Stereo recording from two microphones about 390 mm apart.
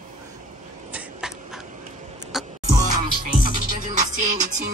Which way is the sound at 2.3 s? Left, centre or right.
Centre.